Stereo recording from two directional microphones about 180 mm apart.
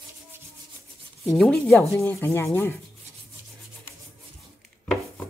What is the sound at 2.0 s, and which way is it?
Rub, 15° left (ahead or behind).